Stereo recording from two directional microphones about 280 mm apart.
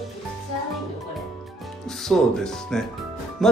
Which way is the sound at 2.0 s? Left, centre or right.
Centre.